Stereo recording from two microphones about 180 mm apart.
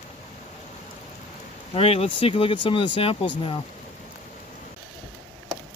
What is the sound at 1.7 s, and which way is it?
Speech, 35° left (ahead or behind).